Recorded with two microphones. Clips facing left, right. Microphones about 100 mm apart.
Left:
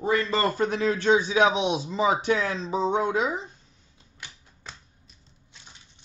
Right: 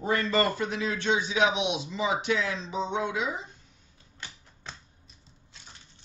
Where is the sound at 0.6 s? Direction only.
45° left (ahead or behind).